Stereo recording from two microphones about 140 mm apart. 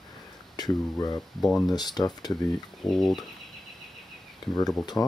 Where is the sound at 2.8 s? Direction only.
5° left (ahead or behind).